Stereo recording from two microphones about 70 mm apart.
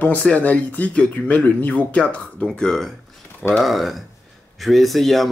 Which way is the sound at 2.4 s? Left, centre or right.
Centre.